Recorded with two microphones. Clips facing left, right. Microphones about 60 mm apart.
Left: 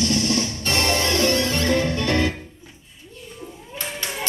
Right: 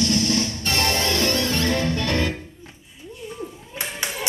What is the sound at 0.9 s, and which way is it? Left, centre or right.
Music, centre.